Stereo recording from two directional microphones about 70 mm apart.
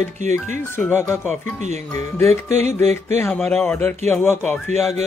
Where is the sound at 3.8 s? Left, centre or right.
Left.